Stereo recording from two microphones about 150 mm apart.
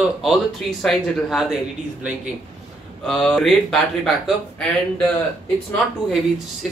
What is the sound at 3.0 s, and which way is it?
Speech, centre (ahead or behind).